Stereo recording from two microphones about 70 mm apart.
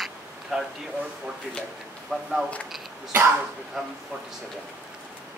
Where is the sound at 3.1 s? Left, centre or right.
Right.